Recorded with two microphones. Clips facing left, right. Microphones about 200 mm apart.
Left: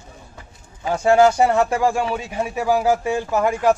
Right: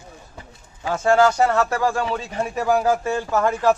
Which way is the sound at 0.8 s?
15° left (ahead or behind).